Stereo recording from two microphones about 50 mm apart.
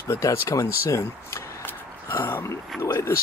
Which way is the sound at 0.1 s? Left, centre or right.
Left.